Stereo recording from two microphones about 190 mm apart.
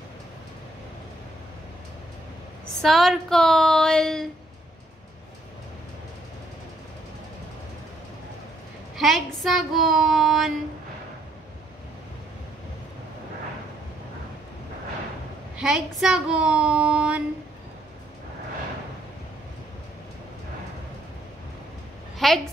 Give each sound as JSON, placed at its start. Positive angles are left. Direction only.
{"t": 2.8, "sound": "a woman's voice", "side_deg": 0}
{"t": 8.9, "sound": "a woman's voice", "side_deg": 0}
{"t": 15.5, "sound": "a woman's voice", "side_deg": -5}
{"t": 22.2, "sound": "a woman's voice", "side_deg": 0}